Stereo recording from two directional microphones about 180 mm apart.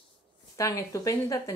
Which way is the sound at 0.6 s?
20° left (ahead or behind).